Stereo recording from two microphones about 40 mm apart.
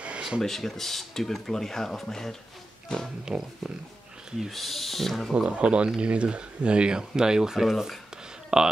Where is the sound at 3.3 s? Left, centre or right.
Right.